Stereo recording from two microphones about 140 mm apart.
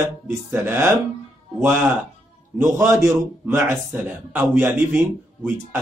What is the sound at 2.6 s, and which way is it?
A man's voice, 20° right (ahead or behind).